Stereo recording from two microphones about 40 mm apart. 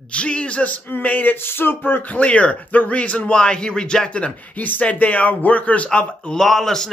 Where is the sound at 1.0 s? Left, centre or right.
Left.